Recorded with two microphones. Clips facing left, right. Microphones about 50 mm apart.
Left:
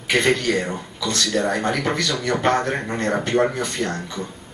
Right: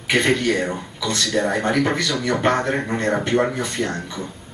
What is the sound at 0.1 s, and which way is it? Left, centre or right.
A man's voice, centre.